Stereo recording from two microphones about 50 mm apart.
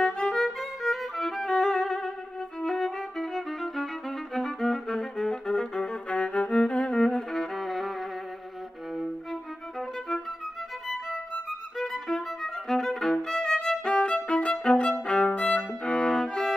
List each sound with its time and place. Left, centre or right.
0.0 s violin: centre
0.4 s violin: centre
6.0 s music: left; by 7.9 s centre
9.8 s violin: centre
11.8 s music: centre
13.9 s violin: left